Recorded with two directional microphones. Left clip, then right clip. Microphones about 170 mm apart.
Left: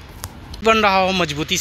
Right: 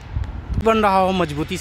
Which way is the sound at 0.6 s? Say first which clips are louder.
Left 1 dB; 15° right (ahead or behind).